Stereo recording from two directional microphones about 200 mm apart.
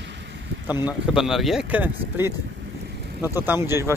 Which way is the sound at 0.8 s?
5° right (ahead or behind).